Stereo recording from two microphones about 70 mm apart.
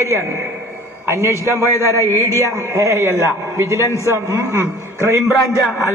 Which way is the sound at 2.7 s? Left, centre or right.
Right.